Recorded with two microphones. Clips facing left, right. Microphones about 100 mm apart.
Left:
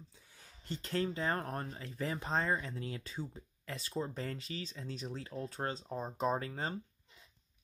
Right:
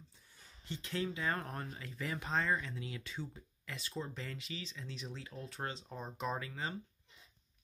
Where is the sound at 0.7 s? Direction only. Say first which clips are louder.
Left 3 dB; 45° left (ahead or behind).